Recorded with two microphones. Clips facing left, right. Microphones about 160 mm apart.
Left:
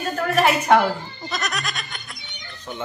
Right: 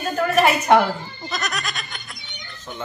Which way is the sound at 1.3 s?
Centre (ahead or behind).